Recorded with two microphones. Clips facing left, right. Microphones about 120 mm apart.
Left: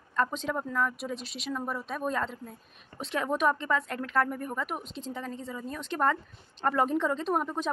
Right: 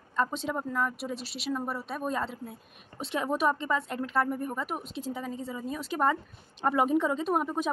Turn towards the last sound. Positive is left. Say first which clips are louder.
# right 1 dB
turn(degrees=-5)  # may be behind; listen again after turning